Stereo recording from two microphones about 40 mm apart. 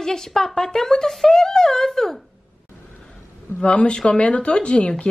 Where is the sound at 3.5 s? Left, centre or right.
Left.